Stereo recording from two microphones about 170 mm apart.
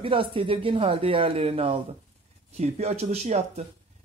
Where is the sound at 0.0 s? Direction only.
30° right (ahead or behind).